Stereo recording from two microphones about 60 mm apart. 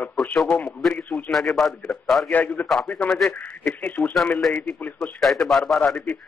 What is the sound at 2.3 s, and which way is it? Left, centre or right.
Speech, left.